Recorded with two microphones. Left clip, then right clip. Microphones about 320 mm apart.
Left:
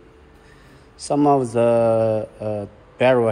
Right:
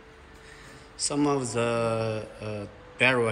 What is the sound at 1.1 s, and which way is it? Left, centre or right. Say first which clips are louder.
A man's voice: left 10 dB; centre.